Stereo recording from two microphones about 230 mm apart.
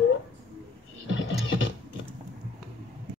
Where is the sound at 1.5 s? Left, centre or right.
Left.